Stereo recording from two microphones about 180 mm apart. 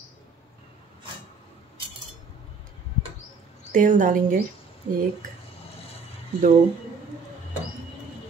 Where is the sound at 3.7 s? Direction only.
45° right (ahead or behind).